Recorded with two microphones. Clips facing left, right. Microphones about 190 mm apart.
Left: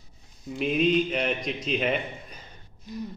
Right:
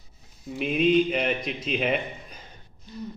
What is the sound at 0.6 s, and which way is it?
A man's voice, centre (ahead or behind).